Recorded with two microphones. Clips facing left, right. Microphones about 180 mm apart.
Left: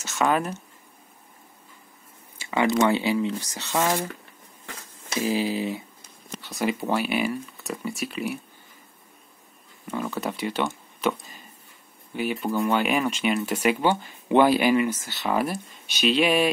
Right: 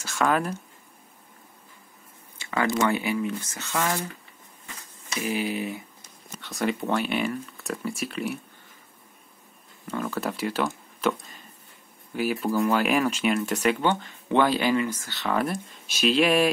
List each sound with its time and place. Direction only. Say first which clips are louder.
0.0 s speech: left 1 dB; centre (ahead or behind)
2.5 s speech: left 3 dB; 20° left (ahead or behind)
3.7 s speech: left 3 dB; 15° left (ahead or behind)
5.3 s speech: left 2 dB; 30° left (ahead or behind)
6.4 s speech: left 1 dB; 5° left (ahead or behind)
9.8 s speech: even; centre (ahead or behind)